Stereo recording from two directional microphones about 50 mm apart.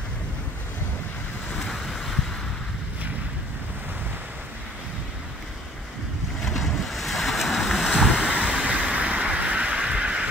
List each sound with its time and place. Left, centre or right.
1.6 s boat: centre
6.4 s waves: centre
8.2 s vehicle: centre